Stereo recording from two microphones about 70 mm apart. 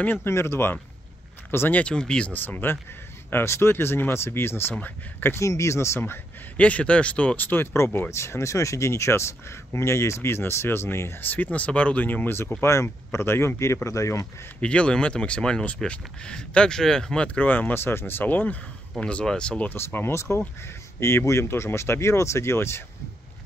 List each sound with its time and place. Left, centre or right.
0.0 s speech: left
1.8 s speech: centre
2.3 s speech: left
5.4 s speech: left
5.9 s speech: left
14.6 s speech: centre
19.7 s speech: left